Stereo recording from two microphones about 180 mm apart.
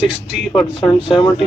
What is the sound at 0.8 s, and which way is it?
Speech, 25° left (ahead or behind).